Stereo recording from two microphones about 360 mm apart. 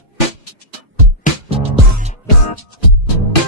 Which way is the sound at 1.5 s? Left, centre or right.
Centre.